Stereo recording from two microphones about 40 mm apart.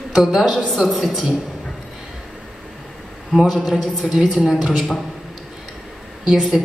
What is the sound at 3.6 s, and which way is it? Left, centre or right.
A woman's voice, centre.